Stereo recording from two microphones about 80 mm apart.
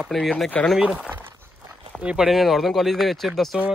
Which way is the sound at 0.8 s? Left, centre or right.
Centre.